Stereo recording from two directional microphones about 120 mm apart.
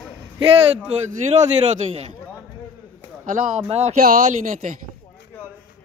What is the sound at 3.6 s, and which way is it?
Speech, 60° right (ahead or behind).